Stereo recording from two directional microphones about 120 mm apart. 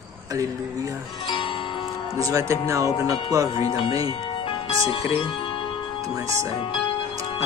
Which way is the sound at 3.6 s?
45° left (ahead or behind).